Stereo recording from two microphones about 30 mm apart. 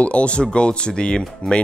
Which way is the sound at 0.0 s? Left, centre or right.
Left.